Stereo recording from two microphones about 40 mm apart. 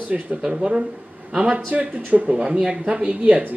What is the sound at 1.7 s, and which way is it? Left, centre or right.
Speech, right.